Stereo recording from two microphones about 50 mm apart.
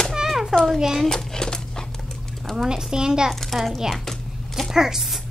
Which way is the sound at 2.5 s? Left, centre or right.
Centre.